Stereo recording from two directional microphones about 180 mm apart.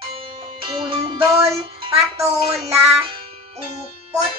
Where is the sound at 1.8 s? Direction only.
35° right (ahead or behind).